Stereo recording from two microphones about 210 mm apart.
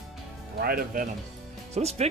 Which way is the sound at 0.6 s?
45° right (ahead or behind).